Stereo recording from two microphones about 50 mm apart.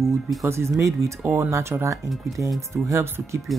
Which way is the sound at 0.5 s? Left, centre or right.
Right.